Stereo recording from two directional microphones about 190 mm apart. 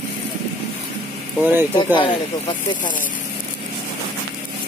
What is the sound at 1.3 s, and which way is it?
Speech, 10° right (ahead or behind).